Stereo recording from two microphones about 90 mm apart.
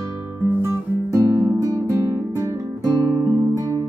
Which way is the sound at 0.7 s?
35° right (ahead or behind).